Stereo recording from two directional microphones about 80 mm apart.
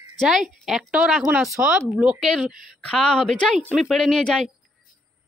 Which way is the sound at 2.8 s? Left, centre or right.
Centre.